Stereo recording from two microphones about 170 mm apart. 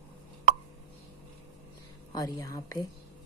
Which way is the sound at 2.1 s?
20° left (ahead or behind).